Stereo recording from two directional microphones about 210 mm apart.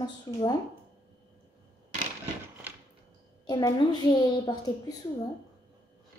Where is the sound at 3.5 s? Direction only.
20° left (ahead or behind).